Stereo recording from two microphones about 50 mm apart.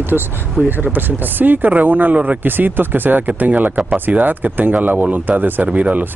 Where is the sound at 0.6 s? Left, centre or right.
Right.